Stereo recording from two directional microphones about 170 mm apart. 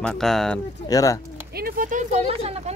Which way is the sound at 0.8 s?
20° left (ahead or behind).